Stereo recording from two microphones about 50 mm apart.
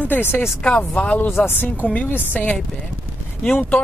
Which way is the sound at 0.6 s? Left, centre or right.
Left.